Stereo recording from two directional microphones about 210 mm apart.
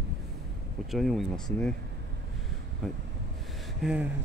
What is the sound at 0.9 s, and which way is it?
Speech, centre (ahead or behind).